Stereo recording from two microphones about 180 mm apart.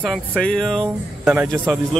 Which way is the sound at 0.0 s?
Centre (ahead or behind).